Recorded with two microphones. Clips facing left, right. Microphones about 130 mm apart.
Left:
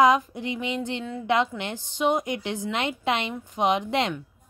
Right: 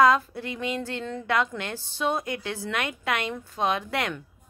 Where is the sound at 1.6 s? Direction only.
20° left (ahead or behind).